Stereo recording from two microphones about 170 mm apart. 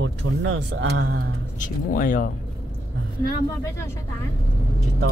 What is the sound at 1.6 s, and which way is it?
Speech, 50° left (ahead or behind).